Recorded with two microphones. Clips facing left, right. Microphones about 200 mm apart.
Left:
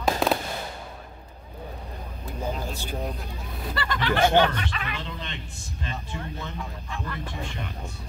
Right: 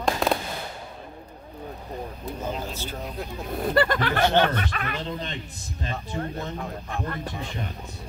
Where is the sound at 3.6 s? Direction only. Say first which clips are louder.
Right 8 dB; 50° right (ahead or behind).